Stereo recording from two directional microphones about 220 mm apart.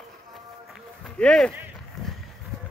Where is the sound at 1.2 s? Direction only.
5° left (ahead or behind).